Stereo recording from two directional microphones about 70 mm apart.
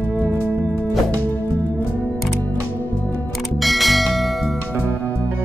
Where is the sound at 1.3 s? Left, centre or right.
Left.